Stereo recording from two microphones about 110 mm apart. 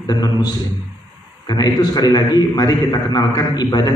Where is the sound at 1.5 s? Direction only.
40° left (ahead or behind).